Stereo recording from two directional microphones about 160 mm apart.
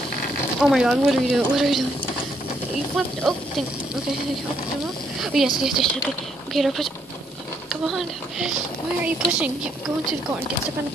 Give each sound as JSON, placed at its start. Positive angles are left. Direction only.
{"t": 0.6, "sound": "speech", "side_deg": 0}
{"t": 3.3, "sound": "speech", "side_deg": 0}
{"t": 5.2, "sound": "a woman's voice", "side_deg": 0}